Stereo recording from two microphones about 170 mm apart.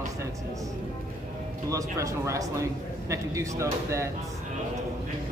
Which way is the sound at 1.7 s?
20° right (ahead or behind).